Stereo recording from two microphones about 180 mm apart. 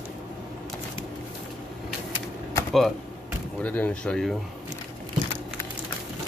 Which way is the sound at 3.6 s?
5° left (ahead or behind).